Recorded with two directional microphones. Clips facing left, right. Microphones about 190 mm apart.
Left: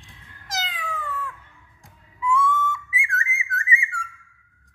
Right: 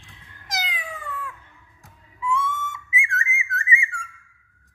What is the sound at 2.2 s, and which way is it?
Whistle, 25° right (ahead or behind).